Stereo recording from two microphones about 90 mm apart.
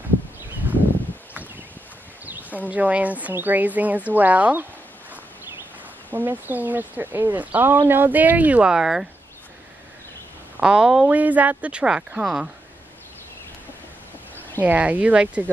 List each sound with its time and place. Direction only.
2.2 s a sound: 20° right (ahead or behind)
2.7 s speech: 15° right (ahead or behind)
6.0 s speech: 20° right (ahead or behind)
10.6 s speech: 10° right (ahead or behind)
11.1 s speech: 20° right (ahead or behind)
14.6 s speech: 15° right (ahead or behind)